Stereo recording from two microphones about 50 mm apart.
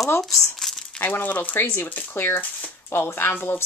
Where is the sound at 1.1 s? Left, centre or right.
Left.